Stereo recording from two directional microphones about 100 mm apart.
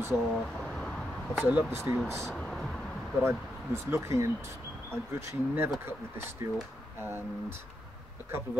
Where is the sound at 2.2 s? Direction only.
5° left (ahead or behind).